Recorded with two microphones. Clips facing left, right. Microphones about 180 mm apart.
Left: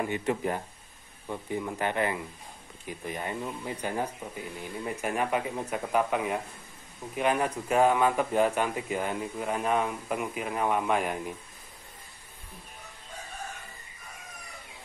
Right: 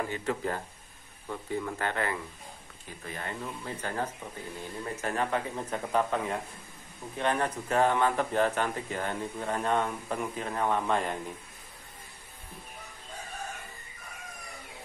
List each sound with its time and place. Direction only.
0.1 s speech: 20° left (ahead or behind)